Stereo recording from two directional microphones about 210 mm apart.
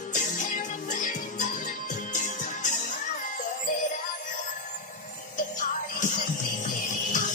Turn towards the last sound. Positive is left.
turn(degrees=40)  # may be behind; listen again after turning